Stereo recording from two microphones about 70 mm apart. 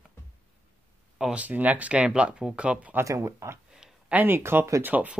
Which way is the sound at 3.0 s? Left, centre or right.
Right.